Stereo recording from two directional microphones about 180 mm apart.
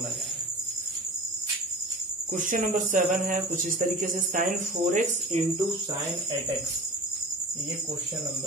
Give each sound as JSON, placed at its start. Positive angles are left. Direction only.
{"t": 2.3, "sound": "speech", "side_deg": -45}